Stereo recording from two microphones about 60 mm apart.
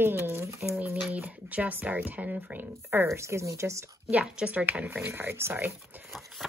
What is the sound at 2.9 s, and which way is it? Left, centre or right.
Speech, right.